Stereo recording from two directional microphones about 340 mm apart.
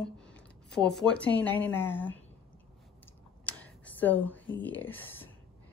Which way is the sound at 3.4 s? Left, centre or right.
Centre.